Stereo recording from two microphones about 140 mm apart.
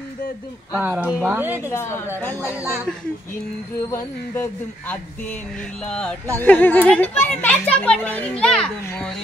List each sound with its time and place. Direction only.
0.7 s speech: 10° right (ahead or behind)
1.7 s a woman's voice: 20° left (ahead or behind)
2.4 s speech: 15° right (ahead or behind)
3.9 s a child's voice: 15° left (ahead or behind)